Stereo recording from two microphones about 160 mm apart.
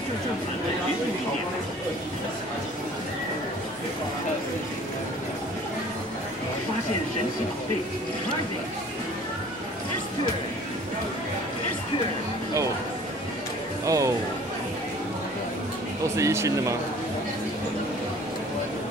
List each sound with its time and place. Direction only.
13.8 s speech: 20° right (ahead or behind)
16.2 s speech: 20° right (ahead or behind)